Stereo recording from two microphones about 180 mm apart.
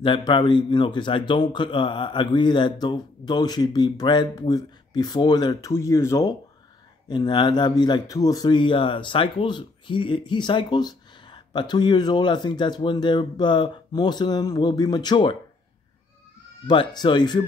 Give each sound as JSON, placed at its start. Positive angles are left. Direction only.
{"t": 0.0, "sound": "speech", "side_deg": 30}
{"t": 16.6, "sound": "speech", "side_deg": 25}